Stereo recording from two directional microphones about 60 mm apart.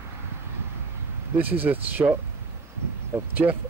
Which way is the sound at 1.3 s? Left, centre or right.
Right.